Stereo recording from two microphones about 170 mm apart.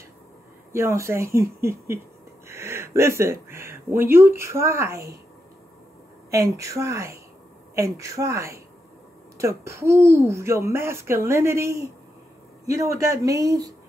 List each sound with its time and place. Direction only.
0.7 s speech: 15° right (ahead or behind)
6.3 s speech: 20° right (ahead or behind)